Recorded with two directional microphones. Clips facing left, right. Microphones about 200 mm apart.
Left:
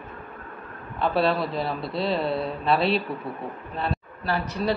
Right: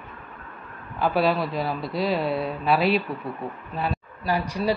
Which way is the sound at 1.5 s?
30° left (ahead or behind).